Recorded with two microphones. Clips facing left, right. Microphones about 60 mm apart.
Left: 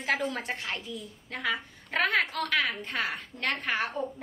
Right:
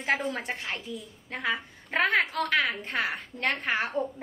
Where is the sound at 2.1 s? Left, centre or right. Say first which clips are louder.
Right 2 dB; centre.